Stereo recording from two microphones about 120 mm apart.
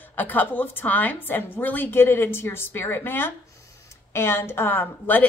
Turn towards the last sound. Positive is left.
turn(degrees=15)  # may be behind; listen again after turning